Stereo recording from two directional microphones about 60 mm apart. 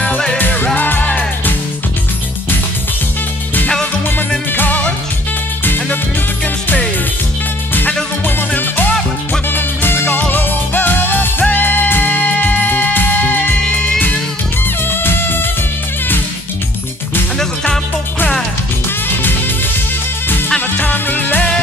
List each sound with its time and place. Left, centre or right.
0.4 s music: left
4.5 s music: left
8.4 s music: left
14.9 s music: left
20.2 s music: left